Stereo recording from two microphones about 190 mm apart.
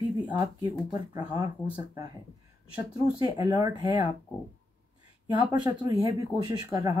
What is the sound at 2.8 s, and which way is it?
Speech, 20° right (ahead or behind).